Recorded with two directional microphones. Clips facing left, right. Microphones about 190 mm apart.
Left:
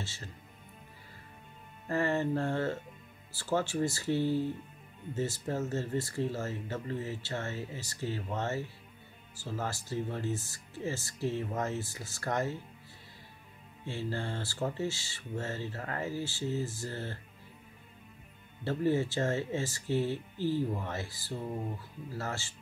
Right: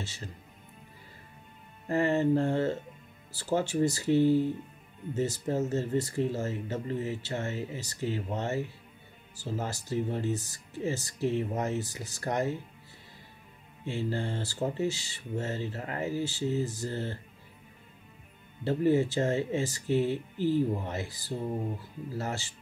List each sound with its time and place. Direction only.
0.0 s speech: 15° right (ahead or behind)
1.9 s speech: 20° right (ahead or behind)
13.8 s speech: 15° right (ahead or behind)
18.6 s speech: 15° right (ahead or behind)